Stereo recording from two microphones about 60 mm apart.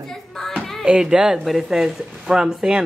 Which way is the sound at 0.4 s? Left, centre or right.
Centre.